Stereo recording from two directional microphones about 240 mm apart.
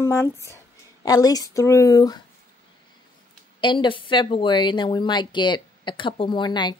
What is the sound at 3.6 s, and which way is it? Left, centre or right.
Speech, centre.